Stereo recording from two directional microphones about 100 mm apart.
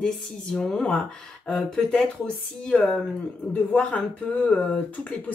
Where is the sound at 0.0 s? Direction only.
5° left (ahead or behind).